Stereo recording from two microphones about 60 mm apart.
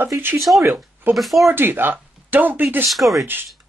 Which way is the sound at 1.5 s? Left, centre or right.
Right.